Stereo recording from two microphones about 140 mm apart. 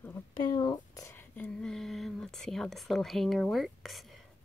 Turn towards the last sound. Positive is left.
turn(degrees=0)  # may be behind; listen again after turning